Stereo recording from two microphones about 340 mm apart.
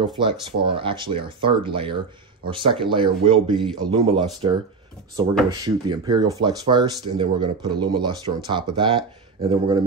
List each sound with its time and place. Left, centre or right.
0.0 s speech: centre